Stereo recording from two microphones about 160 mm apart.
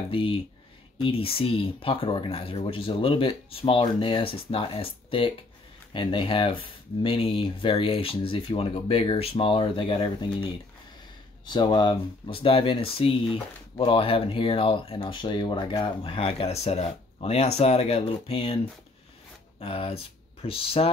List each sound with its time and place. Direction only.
0.1 s speech: 35° left (ahead or behind)
11.4 s speech: 30° left (ahead or behind)
19.6 s speech: 35° left (ahead or behind)